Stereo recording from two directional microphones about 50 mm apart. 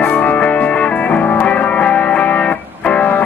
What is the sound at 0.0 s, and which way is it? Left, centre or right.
Music, left.